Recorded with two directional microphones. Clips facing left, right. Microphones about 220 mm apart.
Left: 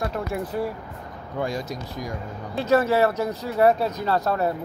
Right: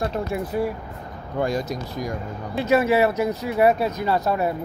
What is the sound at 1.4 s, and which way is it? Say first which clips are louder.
Speech: right 4 dB; 45° right (ahead or behind).